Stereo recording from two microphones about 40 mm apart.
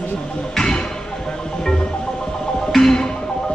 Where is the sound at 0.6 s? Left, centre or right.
Centre.